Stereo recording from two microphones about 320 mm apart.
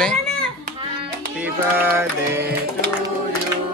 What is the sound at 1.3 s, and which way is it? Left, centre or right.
Music, centre.